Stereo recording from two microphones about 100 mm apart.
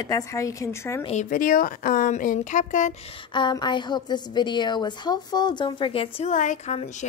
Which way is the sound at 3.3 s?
50° left (ahead or behind).